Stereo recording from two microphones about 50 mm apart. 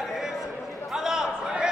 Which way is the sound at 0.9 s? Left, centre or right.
Centre.